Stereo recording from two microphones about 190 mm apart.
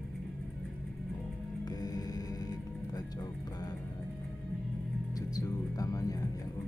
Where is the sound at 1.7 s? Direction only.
20° left (ahead or behind).